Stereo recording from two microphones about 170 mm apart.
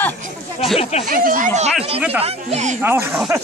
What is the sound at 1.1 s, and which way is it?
Speech, 55° right (ahead or behind).